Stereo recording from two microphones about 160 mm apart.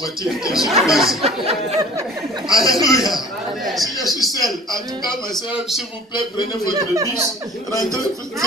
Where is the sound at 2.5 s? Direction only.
20° left (ahead or behind).